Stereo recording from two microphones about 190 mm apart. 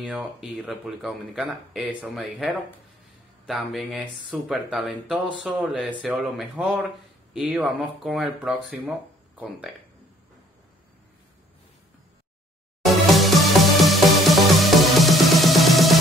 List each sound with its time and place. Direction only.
0.0 s speech: centre (ahead or behind)
13.1 s music: centre (ahead or behind)